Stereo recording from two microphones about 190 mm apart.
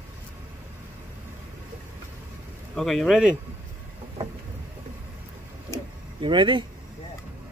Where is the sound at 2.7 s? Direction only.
Centre (ahead or behind).